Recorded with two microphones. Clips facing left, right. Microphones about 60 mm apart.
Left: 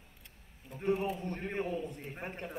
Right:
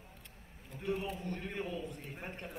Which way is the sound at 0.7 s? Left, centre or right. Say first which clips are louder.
Left 5 dB; left.